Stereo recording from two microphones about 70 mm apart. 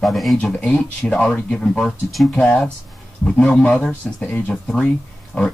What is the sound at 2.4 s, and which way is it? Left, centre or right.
Speech, centre.